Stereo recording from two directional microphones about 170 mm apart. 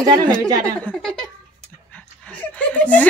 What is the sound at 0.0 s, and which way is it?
Speech, 25° right (ahead or behind).